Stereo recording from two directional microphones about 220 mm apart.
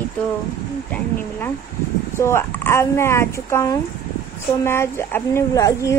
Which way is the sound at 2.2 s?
10° left (ahead or behind).